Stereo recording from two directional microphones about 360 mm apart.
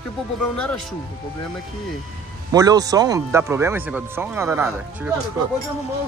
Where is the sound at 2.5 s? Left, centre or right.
Centre.